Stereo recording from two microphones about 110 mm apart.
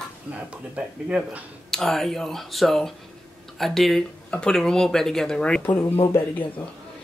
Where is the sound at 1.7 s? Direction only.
5° left (ahead or behind).